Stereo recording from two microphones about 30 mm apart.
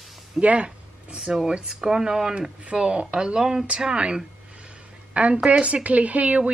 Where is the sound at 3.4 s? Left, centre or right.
Centre.